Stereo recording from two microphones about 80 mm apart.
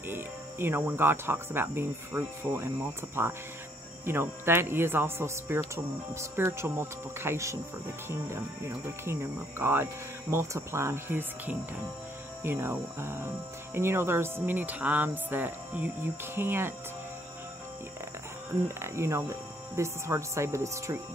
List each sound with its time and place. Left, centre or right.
0.1 s speech: right
18.8 s speech: right